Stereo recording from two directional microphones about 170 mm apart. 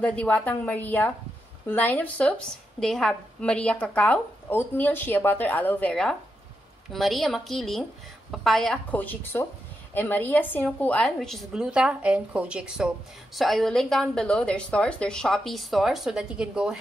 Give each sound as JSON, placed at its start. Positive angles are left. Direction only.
{"t": 0.0, "sound": "a woman's voice", "side_deg": 10}